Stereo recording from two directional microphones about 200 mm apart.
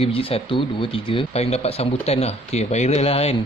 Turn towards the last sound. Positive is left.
turn(degrees=30)  # may be behind; listen again after turning